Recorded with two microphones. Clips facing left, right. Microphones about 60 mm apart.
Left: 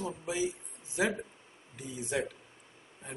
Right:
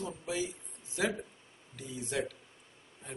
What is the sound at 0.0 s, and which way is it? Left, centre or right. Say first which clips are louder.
Speech: left 3 dB; centre.